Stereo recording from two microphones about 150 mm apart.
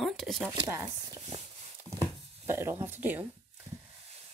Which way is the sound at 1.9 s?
20° right (ahead or behind).